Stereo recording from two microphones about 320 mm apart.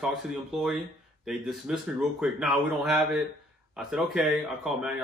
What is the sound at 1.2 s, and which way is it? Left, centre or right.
Speech, centre.